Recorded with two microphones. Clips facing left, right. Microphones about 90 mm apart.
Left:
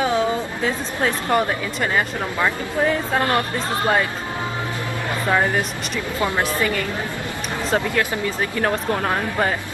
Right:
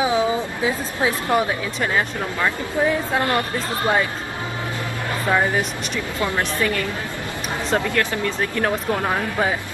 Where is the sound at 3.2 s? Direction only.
20° right (ahead or behind).